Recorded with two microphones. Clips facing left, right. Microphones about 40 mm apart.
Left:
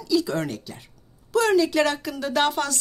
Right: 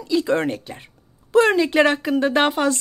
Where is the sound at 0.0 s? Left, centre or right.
Right.